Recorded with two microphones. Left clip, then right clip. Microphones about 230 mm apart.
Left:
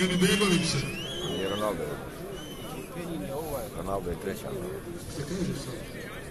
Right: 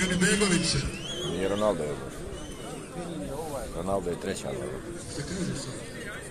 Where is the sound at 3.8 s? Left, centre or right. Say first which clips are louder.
Right 4 dB; right.